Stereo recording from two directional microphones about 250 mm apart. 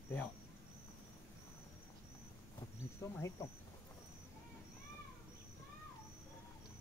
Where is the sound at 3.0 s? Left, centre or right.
Centre.